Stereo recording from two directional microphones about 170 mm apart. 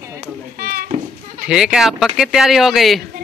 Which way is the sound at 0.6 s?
60° right (ahead or behind).